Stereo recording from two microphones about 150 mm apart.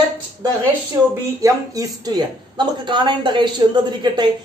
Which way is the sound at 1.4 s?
25° right (ahead or behind).